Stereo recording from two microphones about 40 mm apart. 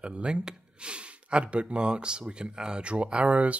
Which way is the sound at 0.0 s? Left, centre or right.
Right.